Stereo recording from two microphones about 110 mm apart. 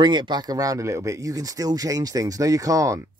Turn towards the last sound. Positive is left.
turn(degrees=-30)  # may be behind; listen again after turning